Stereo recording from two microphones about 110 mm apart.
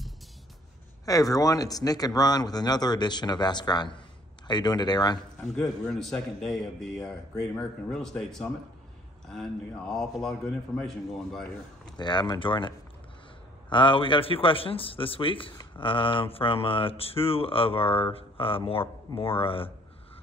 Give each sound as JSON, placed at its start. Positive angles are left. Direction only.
{"t": 1.0, "sound": "speech", "side_deg": 30}
{"t": 5.6, "sound": "speech", "side_deg": 5}
{"t": 12.0, "sound": "a man's voice", "side_deg": 40}